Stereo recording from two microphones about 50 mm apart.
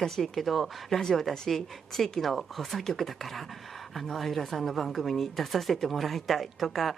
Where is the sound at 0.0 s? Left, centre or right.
Centre.